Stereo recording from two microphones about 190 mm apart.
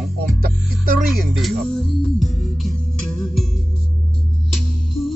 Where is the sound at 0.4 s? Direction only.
50° right (ahead or behind).